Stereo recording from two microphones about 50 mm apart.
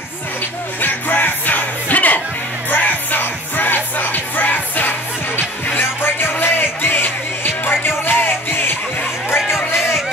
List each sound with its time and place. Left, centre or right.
0.7 s music: left